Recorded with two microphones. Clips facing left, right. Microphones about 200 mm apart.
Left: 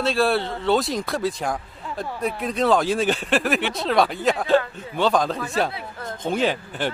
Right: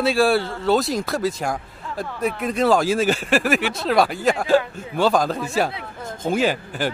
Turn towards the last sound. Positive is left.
turn(degrees=-5)  # may be behind; listen again after turning